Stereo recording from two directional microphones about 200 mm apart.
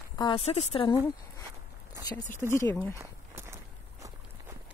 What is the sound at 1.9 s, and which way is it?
Speech, 20° left (ahead or behind).